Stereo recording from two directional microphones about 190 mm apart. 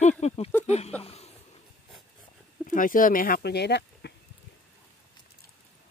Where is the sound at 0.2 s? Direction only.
35° left (ahead or behind).